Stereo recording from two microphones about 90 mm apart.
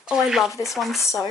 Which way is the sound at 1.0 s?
30° left (ahead or behind).